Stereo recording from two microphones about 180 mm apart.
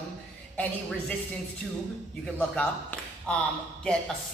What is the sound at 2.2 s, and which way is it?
A man's voice, 5° left (ahead or behind).